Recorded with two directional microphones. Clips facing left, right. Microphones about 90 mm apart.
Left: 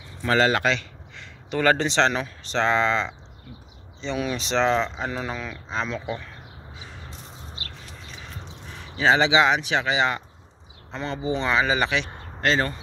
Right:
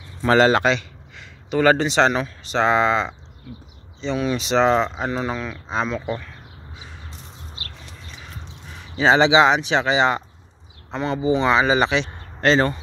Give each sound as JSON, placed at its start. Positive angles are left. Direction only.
{"t": 0.2, "sound": "speech", "side_deg": -30}
{"t": 1.1, "sound": "a man's voice", "side_deg": -5}
{"t": 4.0, "sound": "speech", "side_deg": 0}
{"t": 8.9, "sound": "speech", "side_deg": -25}
{"t": 10.9, "sound": "speech", "side_deg": -15}